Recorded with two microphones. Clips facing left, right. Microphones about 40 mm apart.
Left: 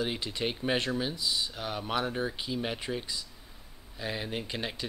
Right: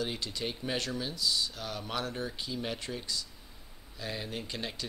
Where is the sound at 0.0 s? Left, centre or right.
Left.